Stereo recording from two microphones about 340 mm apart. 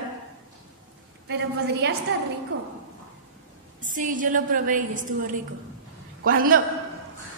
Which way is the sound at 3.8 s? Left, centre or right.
Right.